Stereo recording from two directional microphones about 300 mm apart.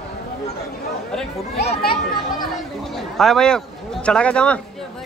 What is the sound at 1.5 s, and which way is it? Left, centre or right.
Speech, left.